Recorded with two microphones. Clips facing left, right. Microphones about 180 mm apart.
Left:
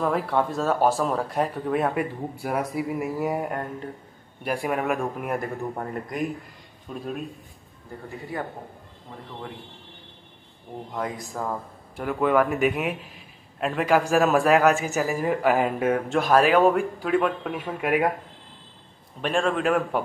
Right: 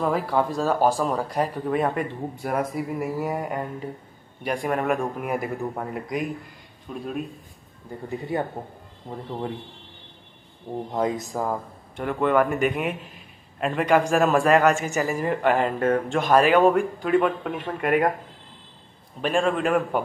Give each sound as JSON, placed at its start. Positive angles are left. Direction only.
{"t": 0.0, "sound": "a man's voice", "side_deg": 0}
{"t": 8.3, "sound": "speech", "side_deg": -25}
{"t": 10.9, "sound": "speech", "side_deg": -20}
{"t": 12.0, "sound": "a man's voice", "side_deg": 5}
{"t": 19.2, "sound": "a man's voice", "side_deg": 0}